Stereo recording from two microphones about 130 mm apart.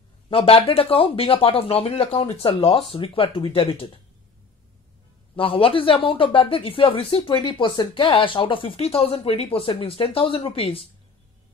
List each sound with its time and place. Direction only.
0.3 s speech: 45° left (ahead or behind)
5.3 s speech: 45° left (ahead or behind)